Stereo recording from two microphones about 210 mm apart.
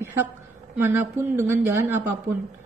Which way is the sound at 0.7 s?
10° right (ahead or behind).